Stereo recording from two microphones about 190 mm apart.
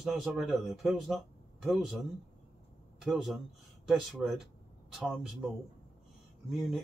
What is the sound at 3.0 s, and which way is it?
Speech, centre (ahead or behind).